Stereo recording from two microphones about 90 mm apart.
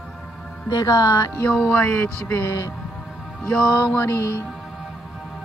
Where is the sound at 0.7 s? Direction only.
45° left (ahead or behind).